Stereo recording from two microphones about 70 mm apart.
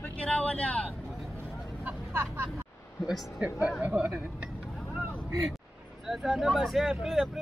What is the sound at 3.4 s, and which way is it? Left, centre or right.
Speech, centre.